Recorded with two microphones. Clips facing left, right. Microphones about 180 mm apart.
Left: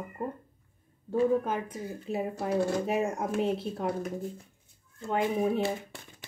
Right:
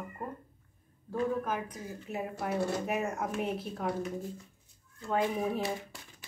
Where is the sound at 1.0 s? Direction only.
30° left (ahead or behind).